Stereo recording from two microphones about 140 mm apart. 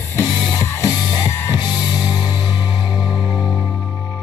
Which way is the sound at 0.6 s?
20° left (ahead or behind).